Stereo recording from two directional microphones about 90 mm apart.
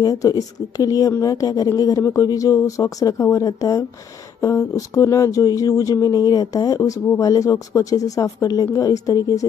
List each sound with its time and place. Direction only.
0.0 s speech: 40° left (ahead or behind)